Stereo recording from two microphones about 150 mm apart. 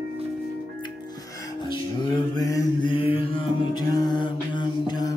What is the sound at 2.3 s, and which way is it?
Mantra, 25° left (ahead or behind).